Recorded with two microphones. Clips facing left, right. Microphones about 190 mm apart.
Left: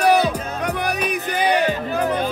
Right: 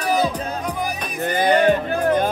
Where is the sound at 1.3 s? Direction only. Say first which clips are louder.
Right 4 dB; 55° right (ahead or behind).